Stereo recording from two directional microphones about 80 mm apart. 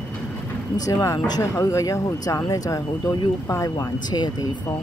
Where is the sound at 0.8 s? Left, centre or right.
Left.